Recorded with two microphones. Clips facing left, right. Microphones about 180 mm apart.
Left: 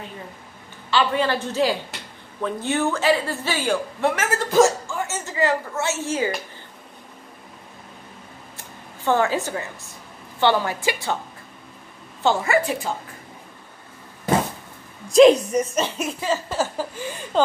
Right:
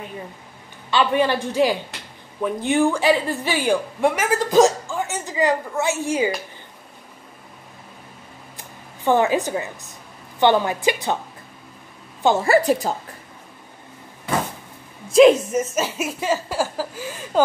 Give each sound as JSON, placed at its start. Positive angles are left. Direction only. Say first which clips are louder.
{"t": 0.8, "sound": "a woman's voice", "louder": "right 2 dB", "side_deg": -15}
{"t": 9.0, "sound": "a woman's voice", "louder": "right 3 dB", "side_deg": -15}
{"t": 12.4, "sound": "a woman's voice", "louder": "right 5 dB", "side_deg": -40}
{"t": 15.0, "sound": "a woman's voice", "louder": "even", "side_deg": 0}